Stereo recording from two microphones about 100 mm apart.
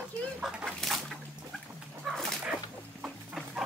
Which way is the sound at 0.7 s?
Centre (ahead or behind).